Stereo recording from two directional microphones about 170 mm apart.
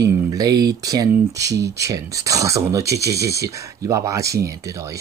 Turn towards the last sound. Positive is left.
turn(degrees=-20)  # may be behind; listen again after turning